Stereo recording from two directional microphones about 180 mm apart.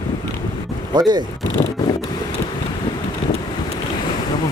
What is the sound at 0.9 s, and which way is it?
Speech, 25° right (ahead or behind).